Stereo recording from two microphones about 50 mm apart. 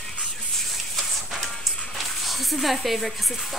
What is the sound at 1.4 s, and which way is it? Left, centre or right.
Music, centre.